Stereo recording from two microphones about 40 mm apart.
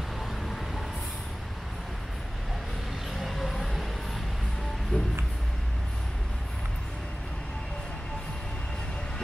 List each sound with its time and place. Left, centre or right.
0.4 s vehicle: centre
3.2 s a sound: centre
4.9 s music: left